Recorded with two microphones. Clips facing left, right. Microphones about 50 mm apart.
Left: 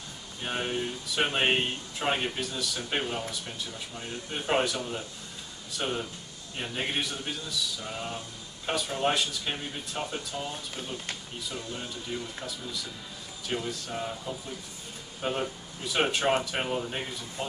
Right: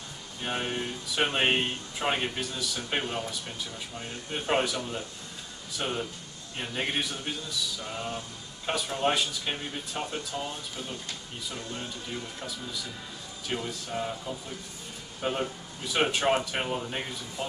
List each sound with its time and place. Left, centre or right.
0.4 s speech: centre